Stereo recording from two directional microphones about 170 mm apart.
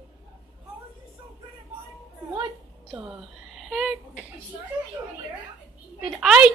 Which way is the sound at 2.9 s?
5° right (ahead or behind).